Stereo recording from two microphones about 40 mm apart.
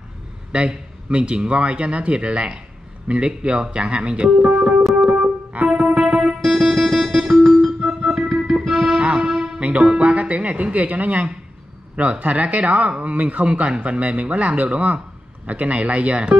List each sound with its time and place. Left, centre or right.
0.5 s a man's voice: right
5.0 s music: right
5.9 s music: centre
6.4 s music: centre
7.8 s music: centre
9.6 s speech: right